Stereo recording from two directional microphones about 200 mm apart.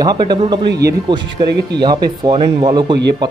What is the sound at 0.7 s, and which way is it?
Speech, 55° right (ahead or behind).